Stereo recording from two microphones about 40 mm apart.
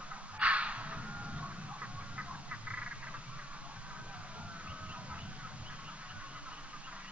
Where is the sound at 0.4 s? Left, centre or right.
Right.